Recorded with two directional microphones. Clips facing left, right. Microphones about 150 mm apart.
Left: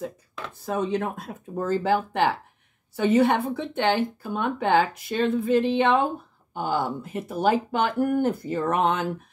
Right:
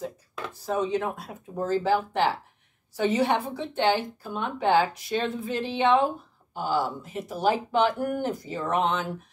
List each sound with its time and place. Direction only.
0.6 s speech: 55° left (ahead or behind)